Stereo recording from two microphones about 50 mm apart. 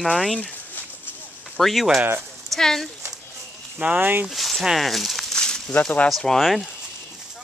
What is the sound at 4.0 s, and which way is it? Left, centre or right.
Speech, right.